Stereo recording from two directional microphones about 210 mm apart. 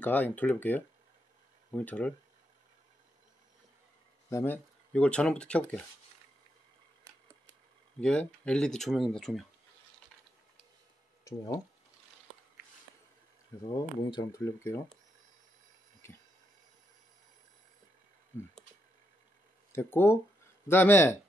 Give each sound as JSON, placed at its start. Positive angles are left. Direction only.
{"t": 0.0, "sound": "speech", "side_deg": 10}
{"t": 4.3, "sound": "speech", "side_deg": 10}
{"t": 8.0, "sound": "speech", "side_deg": 5}
{"t": 11.2, "sound": "speech", "side_deg": 15}
{"t": 13.7, "sound": "speech", "side_deg": 15}
{"t": 16.0, "sound": "a sound", "side_deg": 10}
{"t": 19.7, "sound": "speech", "side_deg": 10}